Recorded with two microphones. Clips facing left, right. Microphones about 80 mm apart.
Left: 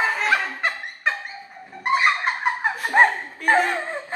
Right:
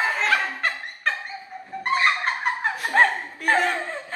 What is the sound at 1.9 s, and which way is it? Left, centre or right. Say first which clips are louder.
Snicker: left 2 dB; centre.